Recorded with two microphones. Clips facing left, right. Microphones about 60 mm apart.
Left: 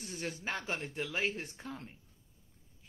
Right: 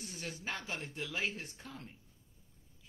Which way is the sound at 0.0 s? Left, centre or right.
Left.